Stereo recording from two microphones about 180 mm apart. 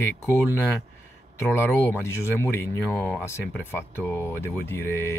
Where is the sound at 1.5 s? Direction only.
15° left (ahead or behind).